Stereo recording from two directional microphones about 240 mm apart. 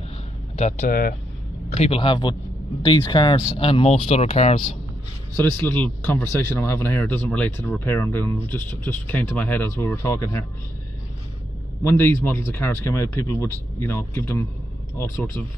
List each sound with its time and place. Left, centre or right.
0.6 s speech: left
1.7 s speech: left
5.3 s speech: centre
11.8 s speech: centre